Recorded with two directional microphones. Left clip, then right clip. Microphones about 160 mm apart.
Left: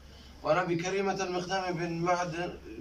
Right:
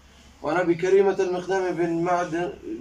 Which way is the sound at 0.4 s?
45° right (ahead or behind).